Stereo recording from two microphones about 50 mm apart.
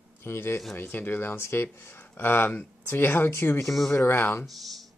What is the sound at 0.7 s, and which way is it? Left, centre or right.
Speech, left.